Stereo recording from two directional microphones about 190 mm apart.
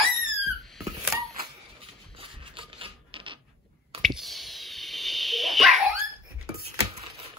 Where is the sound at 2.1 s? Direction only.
30° right (ahead or behind).